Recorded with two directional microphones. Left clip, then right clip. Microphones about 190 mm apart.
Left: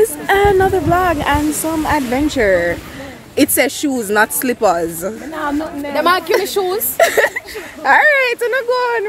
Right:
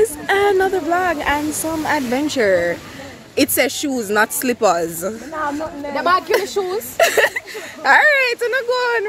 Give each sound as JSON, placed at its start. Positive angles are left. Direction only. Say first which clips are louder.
{"t": 0.0, "sound": "a sound", "louder": "left 3 dB", "side_deg": 0}
{"t": 1.8, "sound": "speech", "louder": "left 2 dB", "side_deg": -20}
{"t": 5.3, "sound": "speech", "louder": "left 3 dB", "side_deg": 0}
{"t": 5.9, "sound": "a woman's voice", "louder": "left 3 dB", "side_deg": 30}
{"t": 7.0, "sound": "speech", "louder": "left 2 dB", "side_deg": -10}
{"t": 8.1, "sound": "speech", "louder": "left 2 dB", "side_deg": 5}